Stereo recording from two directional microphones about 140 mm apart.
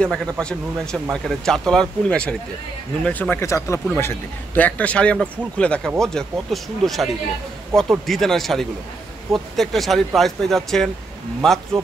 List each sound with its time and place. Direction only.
0.0 s speech: 5° left (ahead or behind)
8.1 s speech: centre (ahead or behind)